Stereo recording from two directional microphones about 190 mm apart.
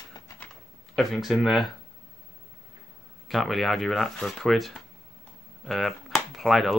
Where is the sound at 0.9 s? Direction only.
Centre (ahead or behind).